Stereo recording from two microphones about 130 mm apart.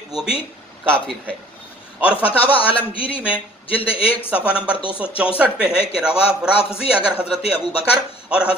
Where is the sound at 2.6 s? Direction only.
45° left (ahead or behind).